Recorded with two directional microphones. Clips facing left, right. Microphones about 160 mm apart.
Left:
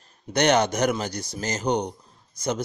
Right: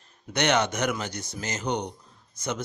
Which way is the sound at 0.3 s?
35° left (ahead or behind).